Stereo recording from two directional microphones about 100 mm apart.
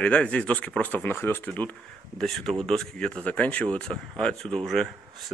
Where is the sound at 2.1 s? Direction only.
5° left (ahead or behind).